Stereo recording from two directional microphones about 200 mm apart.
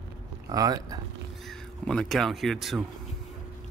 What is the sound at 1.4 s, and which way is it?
Speech, 5° left (ahead or behind).